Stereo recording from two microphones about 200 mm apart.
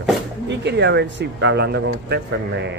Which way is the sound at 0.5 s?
60° right (ahead or behind).